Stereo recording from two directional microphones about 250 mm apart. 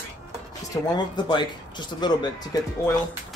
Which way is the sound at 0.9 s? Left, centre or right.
Centre.